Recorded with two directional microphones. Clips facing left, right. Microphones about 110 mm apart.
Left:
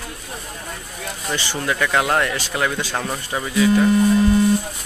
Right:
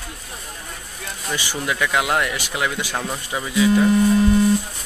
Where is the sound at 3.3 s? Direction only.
Centre (ahead or behind).